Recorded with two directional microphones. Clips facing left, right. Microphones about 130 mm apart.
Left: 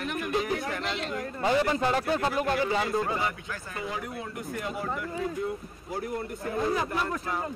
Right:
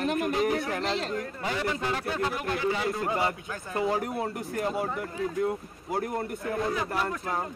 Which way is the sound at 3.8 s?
50° right (ahead or behind).